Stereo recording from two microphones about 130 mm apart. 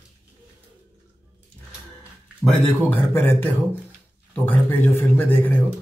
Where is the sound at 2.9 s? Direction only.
15° left (ahead or behind).